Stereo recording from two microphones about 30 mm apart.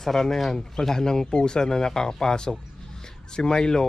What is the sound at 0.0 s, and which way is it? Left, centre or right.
Speech, centre.